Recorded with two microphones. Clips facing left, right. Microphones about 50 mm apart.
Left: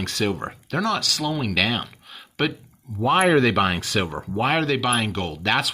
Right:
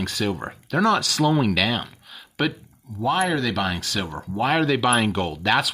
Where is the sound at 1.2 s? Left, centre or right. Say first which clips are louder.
Right 8 dB; centre.